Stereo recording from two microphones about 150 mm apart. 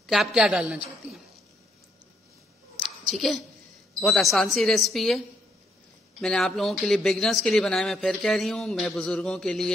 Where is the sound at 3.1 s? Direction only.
Centre (ahead or behind).